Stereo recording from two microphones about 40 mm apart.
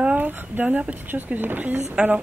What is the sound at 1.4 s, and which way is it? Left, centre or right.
Speech, right.